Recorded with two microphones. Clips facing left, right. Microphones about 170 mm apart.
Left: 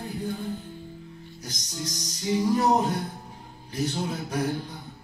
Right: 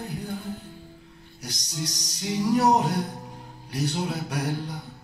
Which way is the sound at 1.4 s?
70° right (ahead or behind).